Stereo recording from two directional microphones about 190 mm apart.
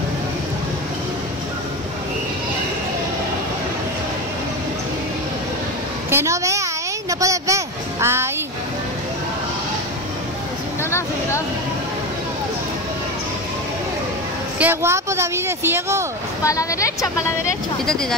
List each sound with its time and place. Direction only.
6.0 s speech: 15° right (ahead or behind)
10.8 s speech: 15° left (ahead or behind)
14.6 s speech: 10° right (ahead or behind)
16.4 s a woman's voice: 15° left (ahead or behind)